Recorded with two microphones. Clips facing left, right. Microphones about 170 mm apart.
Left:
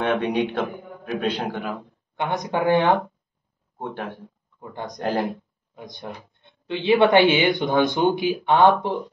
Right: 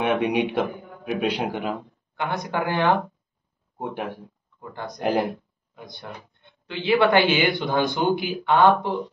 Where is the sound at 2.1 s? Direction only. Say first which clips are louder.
Left 2 dB; 20° left (ahead or behind).